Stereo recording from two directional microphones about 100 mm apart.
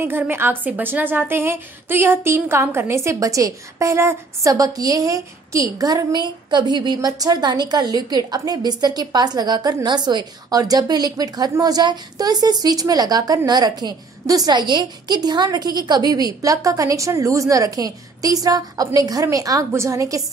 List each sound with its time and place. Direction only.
0.0 s a woman's voice: 20° right (ahead or behind)